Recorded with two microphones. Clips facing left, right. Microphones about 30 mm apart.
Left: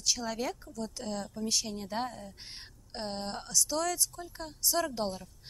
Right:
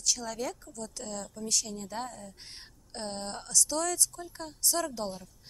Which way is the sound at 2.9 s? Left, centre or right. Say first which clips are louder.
Left 1 dB; centre.